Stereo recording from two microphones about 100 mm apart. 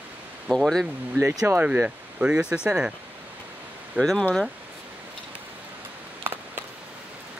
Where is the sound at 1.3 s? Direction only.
30° right (ahead or behind).